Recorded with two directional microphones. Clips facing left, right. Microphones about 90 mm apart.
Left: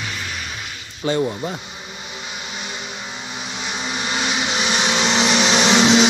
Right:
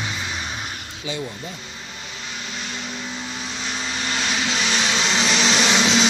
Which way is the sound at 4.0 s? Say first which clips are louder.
Left 2 dB; 15° left (ahead or behind).